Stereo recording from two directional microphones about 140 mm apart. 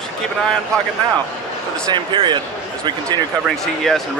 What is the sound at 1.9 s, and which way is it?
Speech, 35° right (ahead or behind).